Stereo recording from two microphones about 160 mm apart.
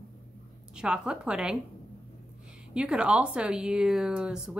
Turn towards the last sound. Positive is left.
turn(degrees=-5)  # may be behind; listen again after turning